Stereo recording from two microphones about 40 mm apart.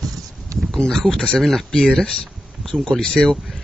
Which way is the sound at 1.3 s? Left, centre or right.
Centre.